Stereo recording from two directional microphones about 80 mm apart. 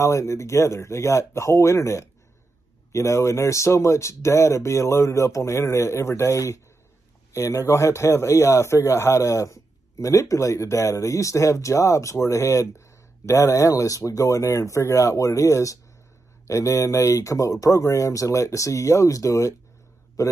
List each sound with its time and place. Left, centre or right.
0.0 s a man's voice: left